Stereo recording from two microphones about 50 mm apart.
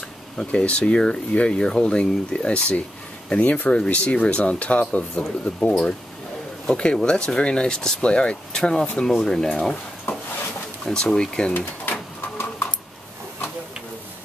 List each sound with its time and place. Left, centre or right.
0.4 s speech: left
10.1 s a sound: left
10.9 s speech: centre
11.5 s bird: left